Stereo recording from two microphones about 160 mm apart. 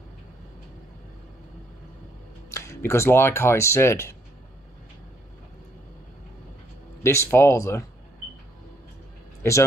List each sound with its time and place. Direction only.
2.5 s speech: 15° left (ahead or behind)
7.0 s speech: 15° left (ahead or behind)
9.4 s speech: 15° left (ahead or behind)